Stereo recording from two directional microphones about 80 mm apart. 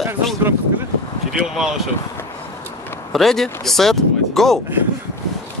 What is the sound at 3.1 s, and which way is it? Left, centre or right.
Groan, centre.